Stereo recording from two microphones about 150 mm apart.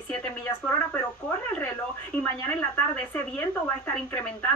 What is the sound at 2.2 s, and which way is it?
A woman's voice, 15° left (ahead or behind).